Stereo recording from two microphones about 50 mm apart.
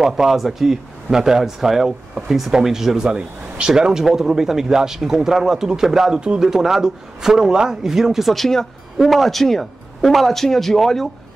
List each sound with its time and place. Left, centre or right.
0.0 s a man's voice: centre